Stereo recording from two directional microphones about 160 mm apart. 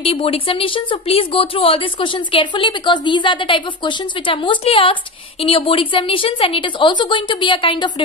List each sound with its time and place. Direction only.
0.0 s speech: 35° left (ahead or behind)